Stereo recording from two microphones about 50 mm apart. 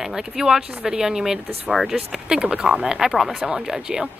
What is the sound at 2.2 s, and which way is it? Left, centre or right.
Speech, centre.